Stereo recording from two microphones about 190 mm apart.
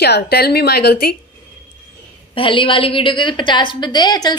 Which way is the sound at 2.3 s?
25° left (ahead or behind).